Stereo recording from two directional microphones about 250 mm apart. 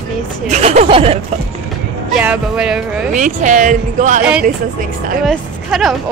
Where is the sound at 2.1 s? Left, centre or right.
Centre.